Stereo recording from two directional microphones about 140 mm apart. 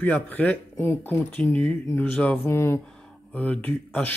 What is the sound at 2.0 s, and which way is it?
A man's voice, 5° left (ahead or behind).